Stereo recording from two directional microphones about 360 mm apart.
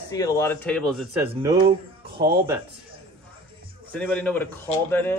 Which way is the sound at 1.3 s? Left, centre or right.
Centre.